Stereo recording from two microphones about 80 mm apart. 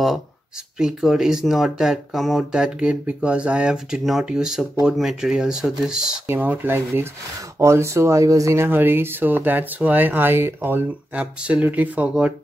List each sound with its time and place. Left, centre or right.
0.7 s speech: centre
2.5 s speech: centre
6.2 s speech: right
7.5 s speech: right
8.6 s speech: right
11.1 s speech: centre